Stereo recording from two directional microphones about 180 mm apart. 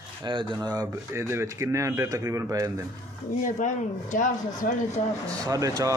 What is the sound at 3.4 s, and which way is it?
Speech, 45° left (ahead or behind).